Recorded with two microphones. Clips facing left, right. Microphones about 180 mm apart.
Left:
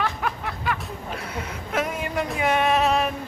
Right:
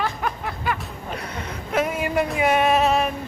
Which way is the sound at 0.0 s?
Centre (ahead or behind).